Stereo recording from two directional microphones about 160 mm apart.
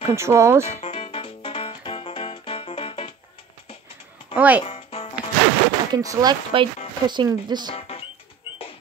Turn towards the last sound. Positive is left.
turn(degrees=-25)  # may be behind; listen again after turning